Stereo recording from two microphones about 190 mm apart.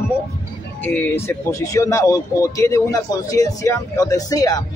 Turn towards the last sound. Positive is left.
turn(degrees=20)  # may be behind; listen again after turning